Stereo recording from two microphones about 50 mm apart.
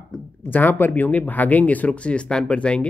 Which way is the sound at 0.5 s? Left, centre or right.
Left.